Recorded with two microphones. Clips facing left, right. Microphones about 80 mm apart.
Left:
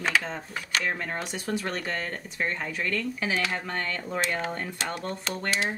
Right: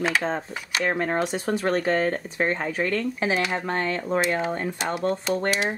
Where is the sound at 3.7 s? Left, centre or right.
Right.